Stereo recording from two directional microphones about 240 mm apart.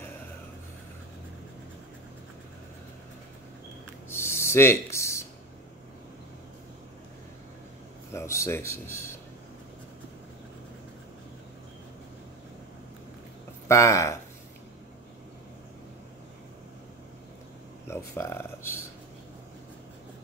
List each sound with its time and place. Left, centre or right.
4.1 s a sound: centre
8.1 s speech: centre
13.7 s speech: centre
17.8 s speech: centre